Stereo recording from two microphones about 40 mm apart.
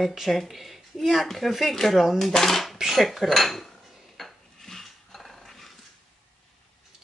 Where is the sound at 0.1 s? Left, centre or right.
Centre.